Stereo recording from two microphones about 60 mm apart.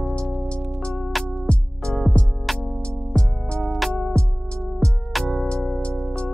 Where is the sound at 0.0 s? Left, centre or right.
Centre.